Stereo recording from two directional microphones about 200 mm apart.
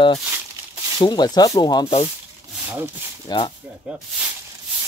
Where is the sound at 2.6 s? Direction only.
10° right (ahead or behind).